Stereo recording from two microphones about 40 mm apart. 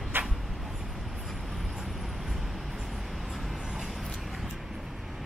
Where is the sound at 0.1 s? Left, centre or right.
Right.